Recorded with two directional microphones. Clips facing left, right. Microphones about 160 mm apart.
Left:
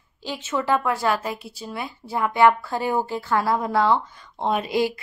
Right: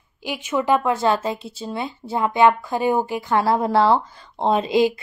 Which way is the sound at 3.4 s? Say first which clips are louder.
Right 4 dB; 30° right (ahead or behind).